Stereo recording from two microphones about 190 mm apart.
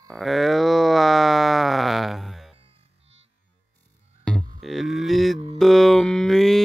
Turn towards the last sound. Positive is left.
turn(degrees=0)  # may be behind; listen again after turning